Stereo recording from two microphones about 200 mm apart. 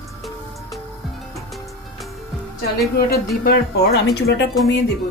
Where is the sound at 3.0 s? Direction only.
50° left (ahead or behind).